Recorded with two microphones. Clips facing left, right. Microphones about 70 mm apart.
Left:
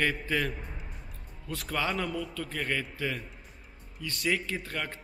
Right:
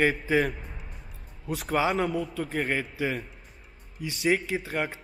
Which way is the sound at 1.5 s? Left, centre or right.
Centre.